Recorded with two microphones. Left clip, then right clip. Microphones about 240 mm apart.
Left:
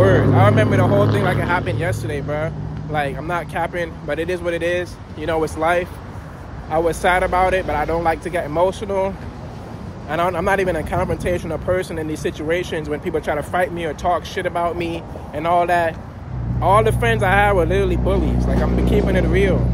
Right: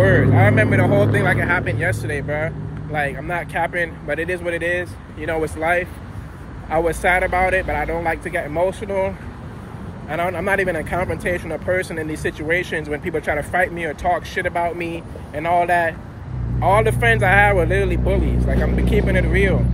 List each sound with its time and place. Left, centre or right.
0.0 s speech: centre
18.4 s speech: left
18.9 s speech: centre